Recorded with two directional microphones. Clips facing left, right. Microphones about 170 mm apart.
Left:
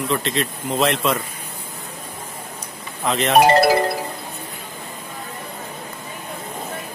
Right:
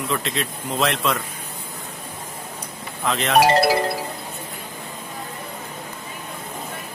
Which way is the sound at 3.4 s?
50° left (ahead or behind).